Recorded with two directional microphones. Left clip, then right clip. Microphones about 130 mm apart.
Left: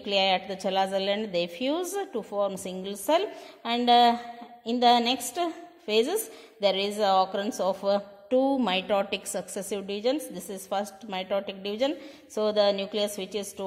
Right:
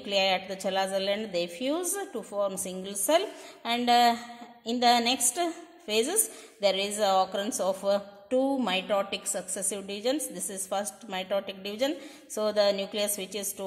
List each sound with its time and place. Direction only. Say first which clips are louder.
0.0 s a woman's voice: left 2 dB; 20° left (ahead or behind)